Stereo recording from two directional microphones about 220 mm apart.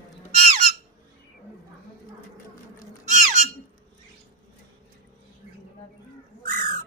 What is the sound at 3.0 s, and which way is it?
Squawk, 35° right (ahead or behind).